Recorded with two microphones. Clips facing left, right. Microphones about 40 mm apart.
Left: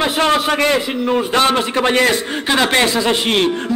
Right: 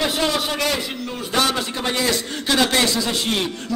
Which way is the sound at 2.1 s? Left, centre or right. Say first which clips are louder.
Left 4 dB; left.